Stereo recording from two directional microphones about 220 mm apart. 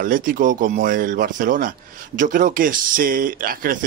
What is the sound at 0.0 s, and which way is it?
Speech, 40° right (ahead or behind).